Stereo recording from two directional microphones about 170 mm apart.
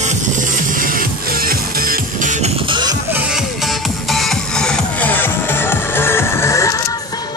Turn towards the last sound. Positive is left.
turn(degrees=20)  # may be behind; listen again after turning